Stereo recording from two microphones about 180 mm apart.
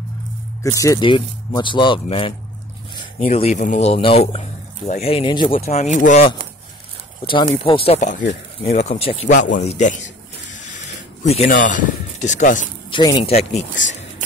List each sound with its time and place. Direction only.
0.7 s speech: 20° left (ahead or behind)
5.9 s speech: 45° left (ahead or behind)
7.2 s speech: 30° left (ahead or behind)
9.3 s speech: 45° left (ahead or behind)
11.2 s speech: 35° left (ahead or behind)
11.5 s speech: 45° left (ahead or behind)
12.9 s speech: 25° left (ahead or behind)